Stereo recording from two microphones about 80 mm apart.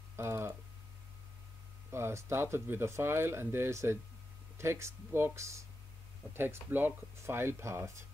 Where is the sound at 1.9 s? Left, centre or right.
Right.